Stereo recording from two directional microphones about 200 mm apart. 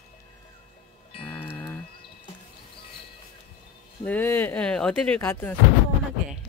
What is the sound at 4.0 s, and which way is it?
Speech, 10° left (ahead or behind).